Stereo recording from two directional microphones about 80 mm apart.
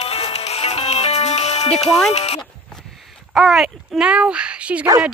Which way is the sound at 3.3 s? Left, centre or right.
Centre.